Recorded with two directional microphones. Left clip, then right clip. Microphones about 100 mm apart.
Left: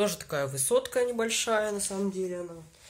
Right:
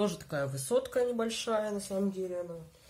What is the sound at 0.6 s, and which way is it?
Speech, 30° left (ahead or behind).